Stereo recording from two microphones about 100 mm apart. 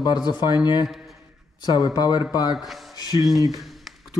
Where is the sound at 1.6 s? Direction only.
45° left (ahead or behind).